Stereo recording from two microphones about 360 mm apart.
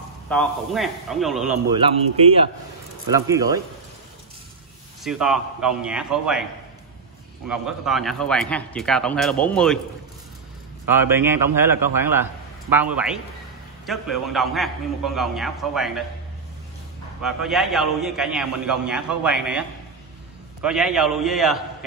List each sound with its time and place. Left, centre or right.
0.3 s a man's voice: centre
1.8 s a man's voice: centre
5.0 s a man's voice: centre
7.4 s a man's voice: centre
10.9 s a man's voice: centre
17.2 s a man's voice: centre
20.6 s a man's voice: centre